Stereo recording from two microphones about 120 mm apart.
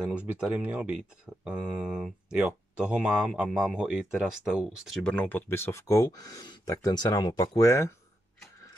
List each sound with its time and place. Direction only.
0.4 s speech: 10° right (ahead or behind)
5.0 s speech: 10° left (ahead or behind)